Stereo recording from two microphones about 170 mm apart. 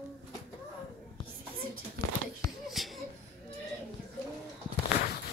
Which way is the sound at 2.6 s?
Centre (ahead or behind).